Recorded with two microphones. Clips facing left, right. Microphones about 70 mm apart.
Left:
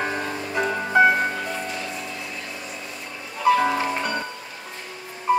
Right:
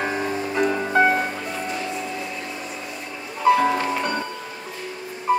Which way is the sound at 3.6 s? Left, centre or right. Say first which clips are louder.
Right 1 dB; centre.